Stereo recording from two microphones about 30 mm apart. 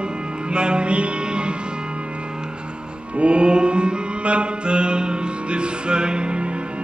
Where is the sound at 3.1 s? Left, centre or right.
Right.